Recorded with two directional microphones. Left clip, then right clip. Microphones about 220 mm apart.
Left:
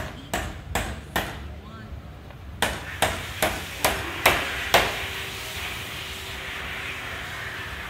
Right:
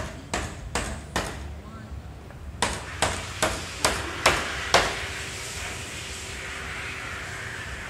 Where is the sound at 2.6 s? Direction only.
50° left (ahead or behind).